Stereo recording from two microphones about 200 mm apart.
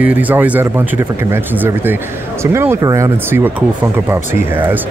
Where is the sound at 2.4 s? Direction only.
15° right (ahead or behind).